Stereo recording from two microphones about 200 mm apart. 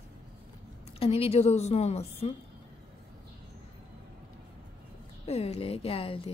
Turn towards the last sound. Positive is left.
turn(degrees=25)  # may be behind; listen again after turning